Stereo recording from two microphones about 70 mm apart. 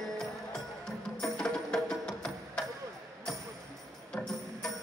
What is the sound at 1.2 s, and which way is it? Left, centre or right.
Music, centre.